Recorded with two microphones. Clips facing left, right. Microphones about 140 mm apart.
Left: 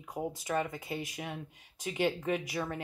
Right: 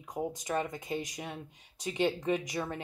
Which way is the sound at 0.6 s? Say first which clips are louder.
Even; 15° right (ahead or behind).